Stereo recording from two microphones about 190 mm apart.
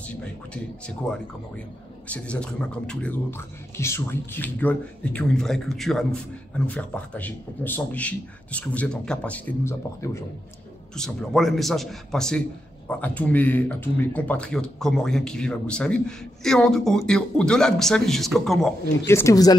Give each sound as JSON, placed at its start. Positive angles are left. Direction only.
{"t": 0.8, "sound": "a man's voice", "side_deg": 5}
{"t": 11.0, "sound": "a man's voice", "side_deg": 0}
{"t": 19.0, "sound": "speech", "side_deg": 15}